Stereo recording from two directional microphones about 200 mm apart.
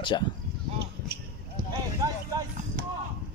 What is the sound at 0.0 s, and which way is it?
Speech, 20° left (ahead or behind).